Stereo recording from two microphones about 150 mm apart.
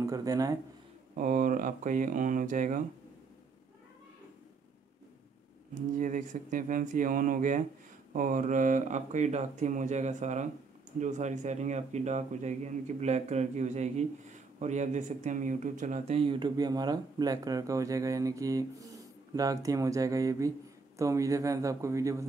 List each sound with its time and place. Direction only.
0.0 s speech: 25° right (ahead or behind)
1.1 s speech: 65° right (ahead or behind)
5.9 s speech: 60° right (ahead or behind)
16.2 s speech: 35° right (ahead or behind)